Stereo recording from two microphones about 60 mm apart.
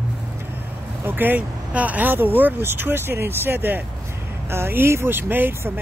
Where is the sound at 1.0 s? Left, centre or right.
Right.